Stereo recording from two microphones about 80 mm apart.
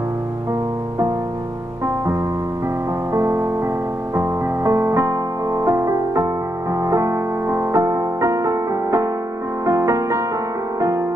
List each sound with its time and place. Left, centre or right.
3.1 s music: right